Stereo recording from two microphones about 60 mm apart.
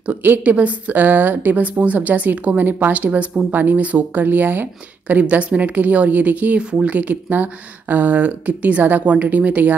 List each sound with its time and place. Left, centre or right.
0.2 s a woman's voice: right